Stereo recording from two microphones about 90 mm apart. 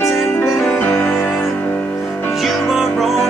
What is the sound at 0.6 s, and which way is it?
Music, 10° left (ahead or behind).